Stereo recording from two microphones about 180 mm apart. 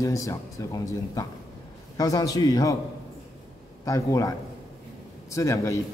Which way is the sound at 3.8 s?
20° left (ahead or behind).